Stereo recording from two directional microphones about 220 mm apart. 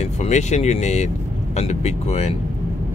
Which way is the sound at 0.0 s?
30° left (ahead or behind).